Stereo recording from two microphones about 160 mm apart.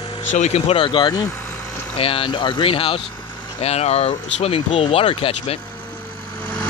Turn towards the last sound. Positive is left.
turn(degrees=35)  # may be behind; listen again after turning